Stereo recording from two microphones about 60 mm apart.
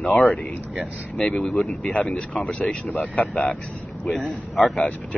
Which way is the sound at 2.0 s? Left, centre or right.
Centre.